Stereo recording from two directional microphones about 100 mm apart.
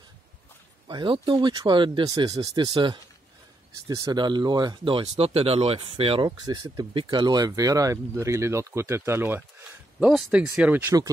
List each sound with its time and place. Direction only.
0.8 s speech: 55° right (ahead or behind)
2.0 s speech: 40° right (ahead or behind)
3.8 s speech: 40° right (ahead or behind); by 6.2 s 70° right (ahead or behind)
6.2 s speech: 40° right (ahead or behind)
6.9 s speech: 55° right (ahead or behind); by 9.4 s 25° right (ahead or behind)
9.9 s speech: 10° right (ahead or behind)